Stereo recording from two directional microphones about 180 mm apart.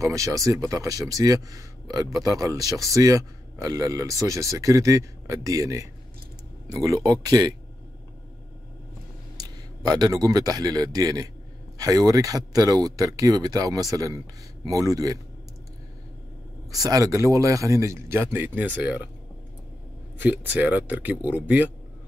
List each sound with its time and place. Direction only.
0.0 s a man's voice: 20° right (ahead or behind)
9.4 s a man's voice: 20° right (ahead or behind)
16.7 s speech: 20° right (ahead or behind)
20.2 s speech: 10° right (ahead or behind)